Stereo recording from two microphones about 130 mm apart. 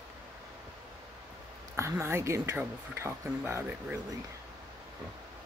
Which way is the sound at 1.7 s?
20° right (ahead or behind).